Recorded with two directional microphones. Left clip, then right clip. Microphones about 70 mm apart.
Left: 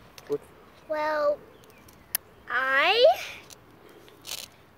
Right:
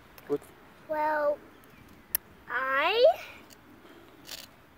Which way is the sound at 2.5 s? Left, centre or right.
Centre.